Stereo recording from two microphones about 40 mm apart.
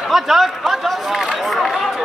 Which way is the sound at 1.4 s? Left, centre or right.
Centre.